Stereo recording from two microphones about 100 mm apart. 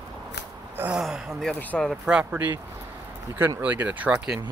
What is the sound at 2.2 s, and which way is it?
Speech, 20° right (ahead or behind).